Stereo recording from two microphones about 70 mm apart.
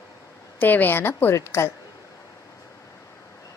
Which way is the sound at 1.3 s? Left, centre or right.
Left.